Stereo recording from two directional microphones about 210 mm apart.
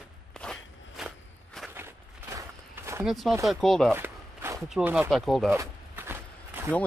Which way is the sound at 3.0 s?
Centre (ahead or behind).